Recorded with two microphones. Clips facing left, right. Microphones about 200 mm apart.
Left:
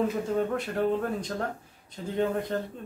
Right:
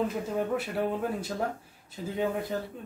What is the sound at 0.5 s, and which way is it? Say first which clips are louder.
Speech: left 2 dB; 5° right (ahead or behind).